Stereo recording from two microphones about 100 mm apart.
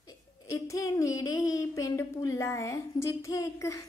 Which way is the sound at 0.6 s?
35° left (ahead or behind).